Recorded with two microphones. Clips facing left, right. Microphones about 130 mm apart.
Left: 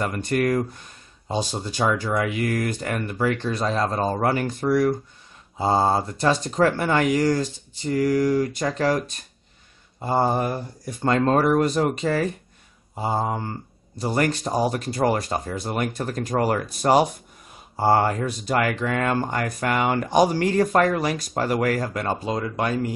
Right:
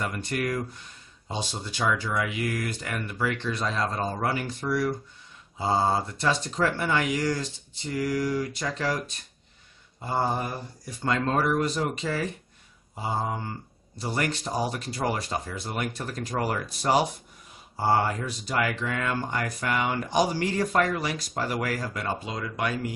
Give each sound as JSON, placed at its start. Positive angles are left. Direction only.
{"t": 0.0, "sound": "speech", "side_deg": 45}
{"t": 10.0, "sound": "speech", "side_deg": 50}